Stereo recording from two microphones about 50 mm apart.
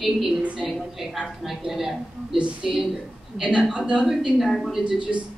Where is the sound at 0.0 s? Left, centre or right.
Centre.